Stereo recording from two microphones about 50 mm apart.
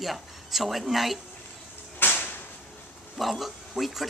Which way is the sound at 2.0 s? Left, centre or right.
Left.